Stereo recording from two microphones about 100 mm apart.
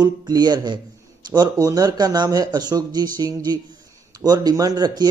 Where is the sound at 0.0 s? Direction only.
45° right (ahead or behind).